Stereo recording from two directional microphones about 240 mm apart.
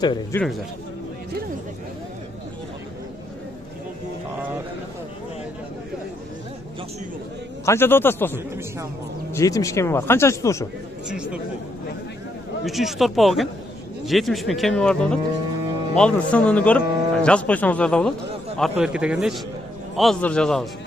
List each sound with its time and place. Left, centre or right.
0.0 s speech: centre
7.6 s speech: centre
11.1 s speech: centre
12.6 s speech: centre